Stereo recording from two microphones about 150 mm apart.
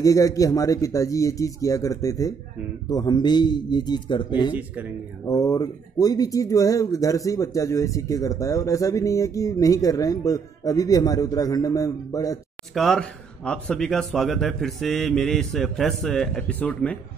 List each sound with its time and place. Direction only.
0.0 s speech: 20° left (ahead or behind)
4.6 s speech: 10° right (ahead or behind)
5.2 s speech: 20° left (ahead or behind)
12.7 s speech: 5° left (ahead or behind)